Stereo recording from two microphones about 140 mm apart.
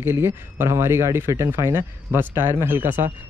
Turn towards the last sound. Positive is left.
turn(degrees=-15)  # may be behind; listen again after turning